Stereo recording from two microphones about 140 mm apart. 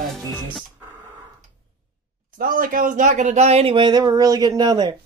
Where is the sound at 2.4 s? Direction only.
75° right (ahead or behind).